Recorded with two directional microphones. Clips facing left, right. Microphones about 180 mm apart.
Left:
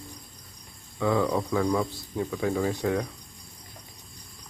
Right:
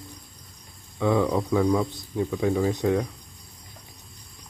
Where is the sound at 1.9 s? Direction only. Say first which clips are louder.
Right 3 dB; 20° right (ahead or behind).